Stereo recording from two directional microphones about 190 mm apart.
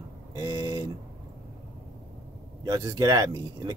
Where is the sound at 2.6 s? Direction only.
15° right (ahead or behind).